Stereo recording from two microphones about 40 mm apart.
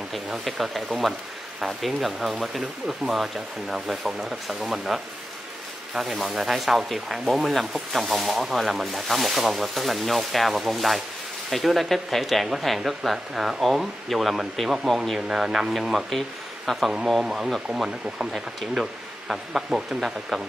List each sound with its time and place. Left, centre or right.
0.5 s speech: centre
15.1 s speech: centre
16.1 s speech: centre
17.2 s speech: centre